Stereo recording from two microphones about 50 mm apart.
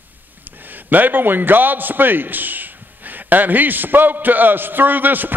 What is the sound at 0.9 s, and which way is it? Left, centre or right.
A man's voice, right.